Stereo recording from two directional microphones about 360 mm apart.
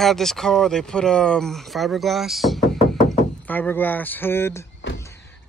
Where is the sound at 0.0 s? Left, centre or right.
Centre.